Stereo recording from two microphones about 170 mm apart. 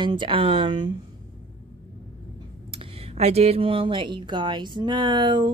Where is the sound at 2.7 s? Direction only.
35° right (ahead or behind).